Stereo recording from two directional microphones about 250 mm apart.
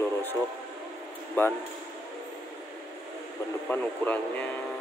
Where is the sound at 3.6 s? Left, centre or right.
Centre.